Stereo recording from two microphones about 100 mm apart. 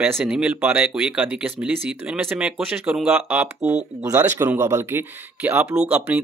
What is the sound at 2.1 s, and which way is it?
Speech, 20° right (ahead or behind).